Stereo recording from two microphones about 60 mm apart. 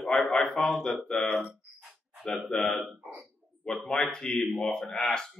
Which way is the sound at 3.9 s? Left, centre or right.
Centre.